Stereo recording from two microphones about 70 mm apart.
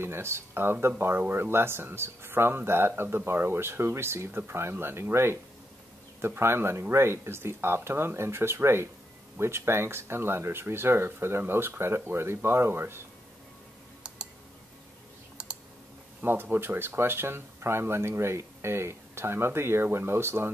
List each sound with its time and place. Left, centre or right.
0.0 s speech: right
14.0 s a sound: centre
15.4 s clicking: centre
16.2 s speech: right